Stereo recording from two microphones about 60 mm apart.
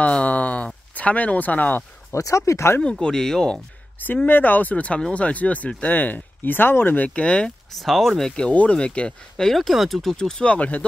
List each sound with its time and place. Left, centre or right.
0.0 s a sound: left
0.9 s speech: left
2.1 s speech: left
2.8 s speech: centre
4.3 s speech: left
7.2 s speech: centre
7.7 s speech: centre
8.3 s speech: centre
9.5 s speech: centre
10.1 s speech: centre